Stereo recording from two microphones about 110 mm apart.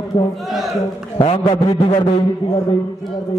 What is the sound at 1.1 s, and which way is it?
Speech, 55° left (ahead or behind).